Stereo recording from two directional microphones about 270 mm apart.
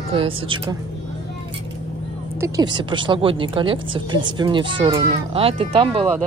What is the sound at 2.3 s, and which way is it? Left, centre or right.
Speech, centre.